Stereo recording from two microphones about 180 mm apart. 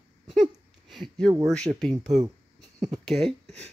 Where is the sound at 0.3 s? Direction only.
Centre (ahead or behind).